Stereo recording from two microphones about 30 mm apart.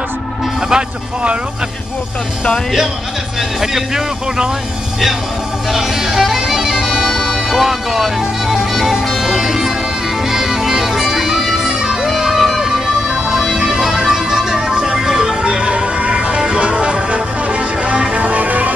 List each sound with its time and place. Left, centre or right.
3.7 s speech: centre
5.7 s music: centre
12.1 s music: centre
13.6 s music: centre
15.4 s music: right
18.2 s music: right